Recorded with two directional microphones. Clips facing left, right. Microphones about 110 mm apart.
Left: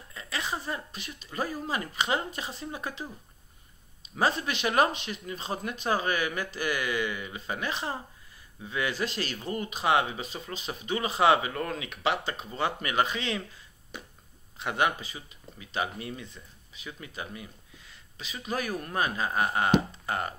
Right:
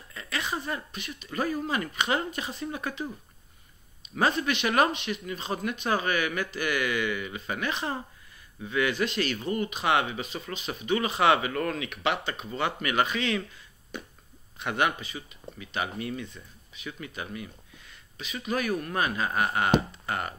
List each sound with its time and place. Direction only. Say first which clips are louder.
0.1 s a sound: right 2 dB; 15° left (ahead or behind)
0.9 s speech: right 2 dB; 35° left (ahead or behind)
4.5 s speech: right 1 dB; 30° left (ahead or behind)
14.6 s speech: even; 25° left (ahead or behind)